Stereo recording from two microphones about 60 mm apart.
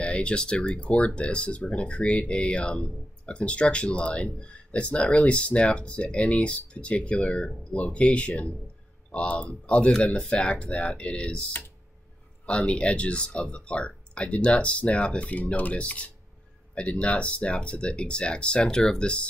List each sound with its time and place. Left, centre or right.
0.0 s speech: centre
12.4 s speech: centre